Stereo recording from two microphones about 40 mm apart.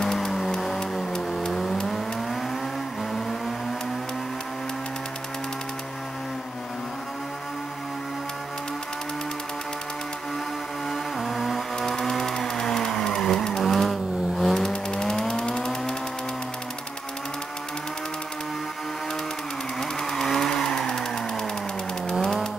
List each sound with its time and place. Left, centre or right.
0.0 s a sound: centre
0.5 s vehicle: centre
10.9 s music: centre
11.8 s vehicle: centre
14.7 s music: left
15.0 s a sound: centre
19.8 s vehicle: centre